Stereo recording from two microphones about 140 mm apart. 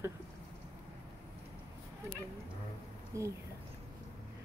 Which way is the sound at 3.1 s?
20° right (ahead or behind).